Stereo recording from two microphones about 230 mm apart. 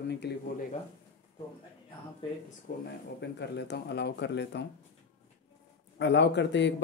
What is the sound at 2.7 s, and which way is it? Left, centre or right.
Speech, left.